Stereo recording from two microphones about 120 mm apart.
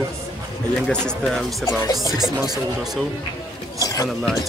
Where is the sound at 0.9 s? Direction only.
Centre (ahead or behind).